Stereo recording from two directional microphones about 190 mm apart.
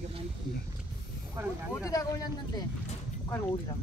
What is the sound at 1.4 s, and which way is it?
Speech, 15° right (ahead or behind).